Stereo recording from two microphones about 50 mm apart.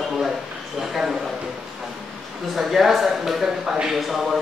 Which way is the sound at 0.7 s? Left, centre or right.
Centre.